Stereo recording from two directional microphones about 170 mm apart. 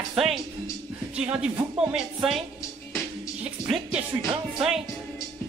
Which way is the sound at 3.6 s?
5° right (ahead or behind).